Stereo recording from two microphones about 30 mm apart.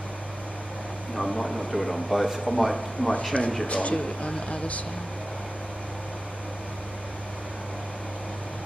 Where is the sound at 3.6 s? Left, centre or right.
Left.